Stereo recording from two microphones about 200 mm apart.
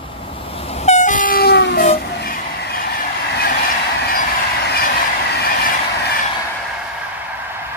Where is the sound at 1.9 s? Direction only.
50° left (ahead or behind).